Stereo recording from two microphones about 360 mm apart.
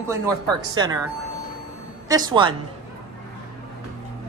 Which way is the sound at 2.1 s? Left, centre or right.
Centre.